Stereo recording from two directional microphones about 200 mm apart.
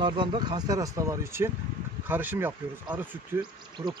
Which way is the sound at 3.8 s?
25° right (ahead or behind).